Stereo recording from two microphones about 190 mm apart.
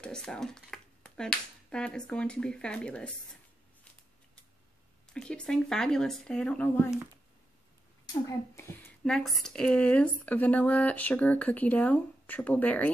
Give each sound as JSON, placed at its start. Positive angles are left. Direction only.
{"t": 0.0, "sound": "speech", "side_deg": 5}
{"t": 5.1, "sound": "speech", "side_deg": 5}
{"t": 8.1, "sound": "speech", "side_deg": 15}